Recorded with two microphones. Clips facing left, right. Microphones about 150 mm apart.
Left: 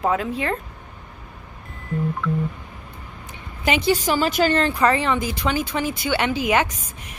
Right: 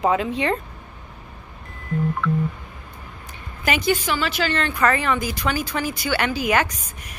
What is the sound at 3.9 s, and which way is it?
Speech, 40° left (ahead or behind).